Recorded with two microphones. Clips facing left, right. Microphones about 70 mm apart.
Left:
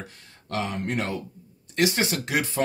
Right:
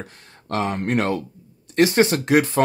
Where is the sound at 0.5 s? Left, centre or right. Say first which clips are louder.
Right 6 dB; right.